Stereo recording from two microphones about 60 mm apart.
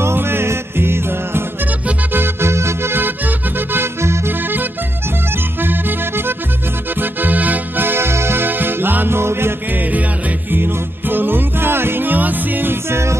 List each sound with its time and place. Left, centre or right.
0.0 s music: right
4.3 s music: right
12.9 s music: right